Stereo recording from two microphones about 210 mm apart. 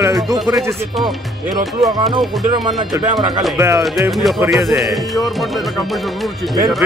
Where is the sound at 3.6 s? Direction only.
15° right (ahead or behind).